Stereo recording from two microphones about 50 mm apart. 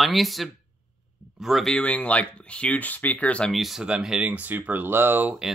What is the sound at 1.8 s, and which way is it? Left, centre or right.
Speech, left.